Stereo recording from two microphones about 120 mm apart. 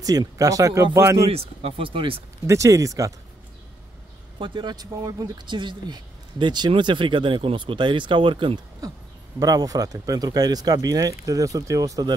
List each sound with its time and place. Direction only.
0.0 s speech: 30° right (ahead or behind)
1.3 s speech: 55° right (ahead or behind)
2.4 s speech: 25° right (ahead or behind)
4.4 s speech: 40° right (ahead or behind)
9.4 s speech: 30° right (ahead or behind)